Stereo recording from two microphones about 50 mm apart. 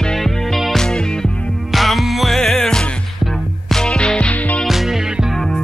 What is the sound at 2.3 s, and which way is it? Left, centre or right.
Music, centre.